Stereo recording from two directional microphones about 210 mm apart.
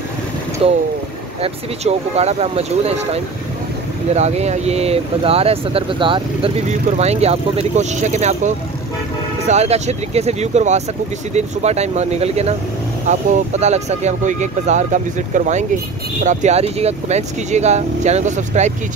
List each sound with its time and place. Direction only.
0.6 s speech: 25° right (ahead or behind)